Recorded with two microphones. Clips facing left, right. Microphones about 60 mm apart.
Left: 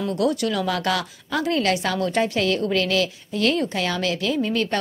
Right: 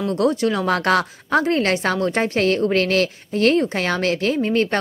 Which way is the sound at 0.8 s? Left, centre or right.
Right.